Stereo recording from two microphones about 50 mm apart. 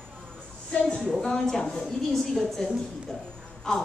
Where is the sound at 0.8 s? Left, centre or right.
Centre.